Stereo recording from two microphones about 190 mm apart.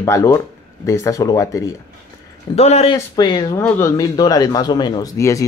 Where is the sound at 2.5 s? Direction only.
35° left (ahead or behind).